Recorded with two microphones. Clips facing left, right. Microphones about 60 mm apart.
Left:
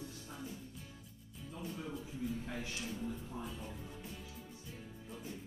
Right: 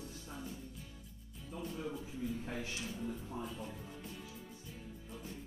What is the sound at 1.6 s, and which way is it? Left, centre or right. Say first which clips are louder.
Speech: right 2 dB; centre.